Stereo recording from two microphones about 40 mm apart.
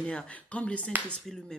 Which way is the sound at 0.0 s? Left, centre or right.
Left.